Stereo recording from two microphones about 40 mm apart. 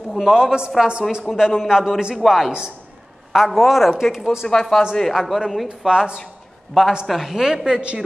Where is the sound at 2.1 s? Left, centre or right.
Centre.